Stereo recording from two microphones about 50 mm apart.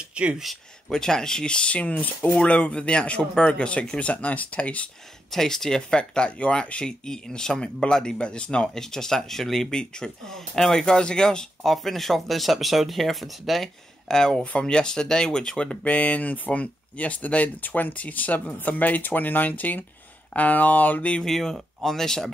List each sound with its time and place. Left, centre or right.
0.0 s a sound: right
0.4 s speech: centre; by 4.8 s left
5.3 s speech: centre
11.6 s speech: centre; by 21.1 s left
21.2 s speech: centre